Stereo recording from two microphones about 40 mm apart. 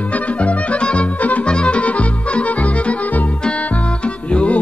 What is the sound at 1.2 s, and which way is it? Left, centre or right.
Music, left.